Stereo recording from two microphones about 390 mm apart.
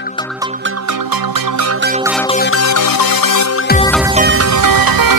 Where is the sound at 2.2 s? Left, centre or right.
Centre.